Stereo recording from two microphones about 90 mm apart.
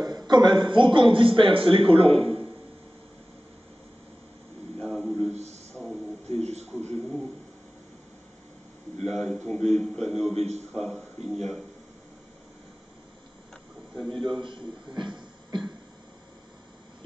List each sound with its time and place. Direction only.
0.0 s a man's voice: 50° right (ahead or behind); by 2.4 s 90° right
4.7 s a sound: 5° left (ahead or behind)
6.8 s a sound: 15° left (ahead or behind)
9.1 s a man's voice: 5° left (ahead or behind)
13.9 s a man's voice: 10° left (ahead or behind)
14.4 s a man's voice: 65° right (ahead or behind)